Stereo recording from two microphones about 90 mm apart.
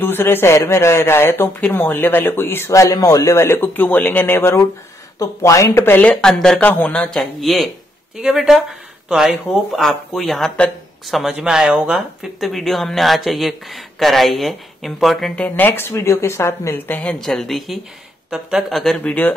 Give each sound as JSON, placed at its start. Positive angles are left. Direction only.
{"t": 0.0, "sound": "speech", "side_deg": 25}
{"t": 5.9, "sound": "speech", "side_deg": 10}
{"t": 15.4, "sound": "speech", "side_deg": 20}
{"t": 17.0, "sound": "speech", "side_deg": 5}
{"t": 19.0, "sound": "speech", "side_deg": 20}